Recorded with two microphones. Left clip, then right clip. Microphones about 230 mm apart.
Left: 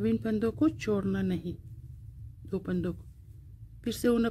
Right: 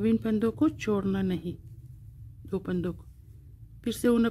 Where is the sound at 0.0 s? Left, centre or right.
Centre.